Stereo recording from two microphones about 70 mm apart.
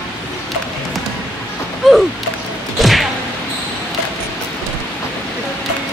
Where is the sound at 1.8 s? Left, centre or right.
Centre.